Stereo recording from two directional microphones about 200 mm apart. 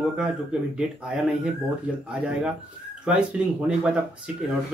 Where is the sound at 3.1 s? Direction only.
5° right (ahead or behind).